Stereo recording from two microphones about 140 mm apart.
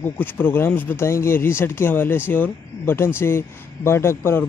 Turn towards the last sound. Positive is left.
turn(degrees=15)  # may be behind; listen again after turning